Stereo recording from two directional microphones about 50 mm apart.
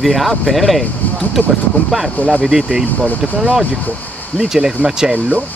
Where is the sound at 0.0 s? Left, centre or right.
Centre.